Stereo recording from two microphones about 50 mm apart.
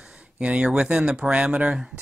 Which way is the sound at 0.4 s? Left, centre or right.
Right.